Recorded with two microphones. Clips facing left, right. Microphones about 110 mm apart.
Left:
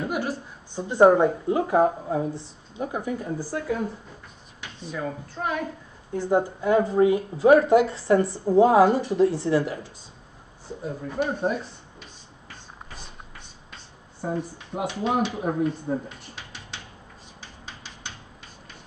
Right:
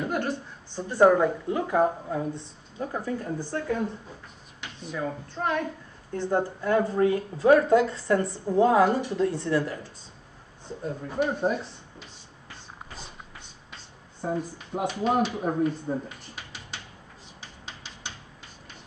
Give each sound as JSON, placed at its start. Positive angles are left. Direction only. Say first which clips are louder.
{"t": 0.1, "sound": "a sound", "louder": "even", "side_deg": 10}
{"t": 0.8, "sound": "a woman's voice", "louder": "left 3 dB", "side_deg": 20}
{"t": 4.9, "sound": "a woman's voice", "louder": "even", "side_deg": 5}
{"t": 10.7, "sound": "speech", "louder": "left 1 dB", "side_deg": 10}
{"t": 11.1, "sound": "speech", "louder": "even", "side_deg": 0}
{"t": 14.2, "sound": "speech", "louder": "even", "side_deg": 5}